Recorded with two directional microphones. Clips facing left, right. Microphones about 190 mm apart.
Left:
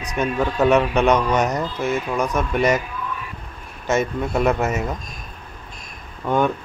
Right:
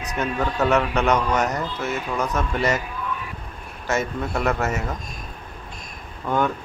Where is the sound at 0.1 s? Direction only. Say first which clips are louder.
Left 3 dB; 15° left (ahead or behind).